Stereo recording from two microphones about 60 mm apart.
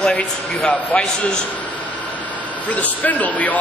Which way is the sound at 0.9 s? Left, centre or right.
Left.